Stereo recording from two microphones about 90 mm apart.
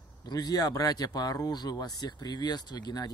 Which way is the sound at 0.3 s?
45° left (ahead or behind).